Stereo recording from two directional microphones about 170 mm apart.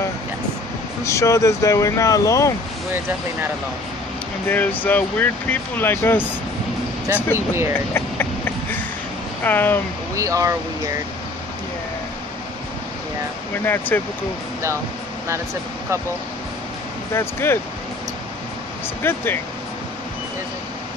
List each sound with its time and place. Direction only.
1.0 s speech: 15° left (ahead or behind)
4.5 s speech: 10° left (ahead or behind)
7.3 s speech: 15° right (ahead or behind)
7.9 s a sound: 10° left (ahead or behind)
9.4 s speech: 10° left (ahead or behind)
10.1 s speech: 20° right (ahead or behind)
13.7 s speech: 10° left (ahead or behind)
17.1 s speech: 15° left (ahead or behind)
19.0 s speech: 15° left (ahead or behind)